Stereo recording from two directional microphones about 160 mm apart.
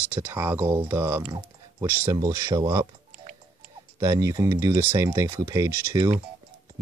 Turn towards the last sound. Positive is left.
turn(degrees=-20)  # may be behind; listen again after turning